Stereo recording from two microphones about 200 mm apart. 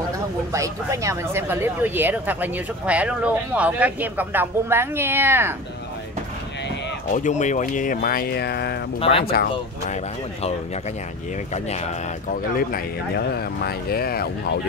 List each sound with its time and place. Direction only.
0.5 s speech: 15° right (ahead or behind)
7.1 s speech: 35° left (ahead or behind)
12.3 s speech: 45° left (ahead or behind)